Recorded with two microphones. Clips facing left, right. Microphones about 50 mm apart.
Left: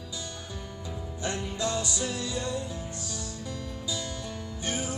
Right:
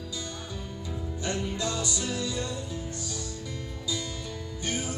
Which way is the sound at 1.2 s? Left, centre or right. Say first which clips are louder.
Even; left.